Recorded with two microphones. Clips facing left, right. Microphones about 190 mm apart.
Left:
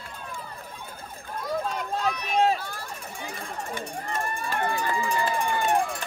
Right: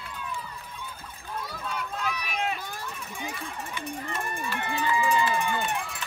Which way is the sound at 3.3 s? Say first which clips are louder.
Left 3 dB; 50° left (ahead or behind).